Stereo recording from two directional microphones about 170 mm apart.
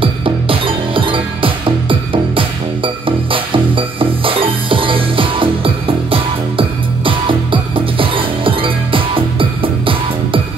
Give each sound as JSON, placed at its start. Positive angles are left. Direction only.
{"t": 0.0, "sound": "music", "side_deg": -30}